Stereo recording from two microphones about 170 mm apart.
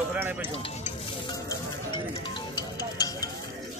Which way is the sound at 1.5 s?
30° left (ahead or behind).